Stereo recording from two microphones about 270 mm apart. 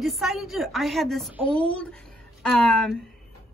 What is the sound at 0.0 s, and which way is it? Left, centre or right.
Speech, centre.